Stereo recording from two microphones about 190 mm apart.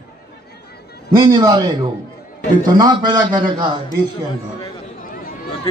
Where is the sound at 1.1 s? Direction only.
20° right (ahead or behind).